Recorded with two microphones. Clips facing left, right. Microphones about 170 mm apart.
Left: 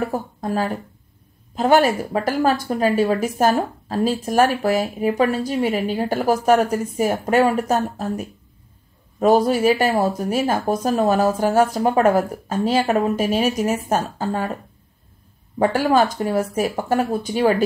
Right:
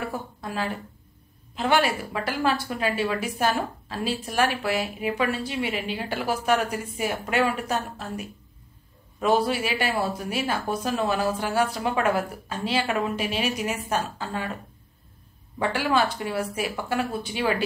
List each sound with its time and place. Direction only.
0.0 s a woman's voice: 40° left (ahead or behind)
15.6 s a woman's voice: 45° left (ahead or behind)